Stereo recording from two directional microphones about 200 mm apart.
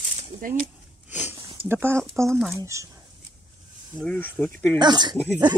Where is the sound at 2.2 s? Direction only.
15° right (ahead or behind).